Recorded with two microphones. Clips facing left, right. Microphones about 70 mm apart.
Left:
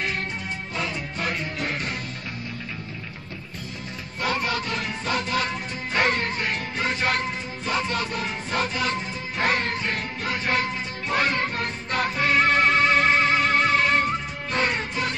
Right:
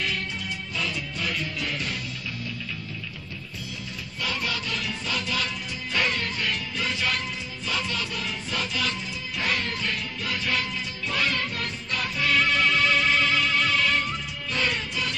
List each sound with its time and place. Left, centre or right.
0.7 s music: left
4.2 s music: left